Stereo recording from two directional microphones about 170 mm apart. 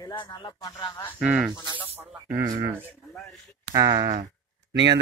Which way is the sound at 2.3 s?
15° right (ahead or behind).